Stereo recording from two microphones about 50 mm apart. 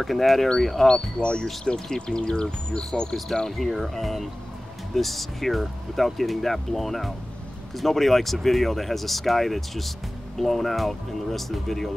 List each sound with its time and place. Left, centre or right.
0.0 s speech: centre
0.8 s speech: centre
3.4 s speech: centre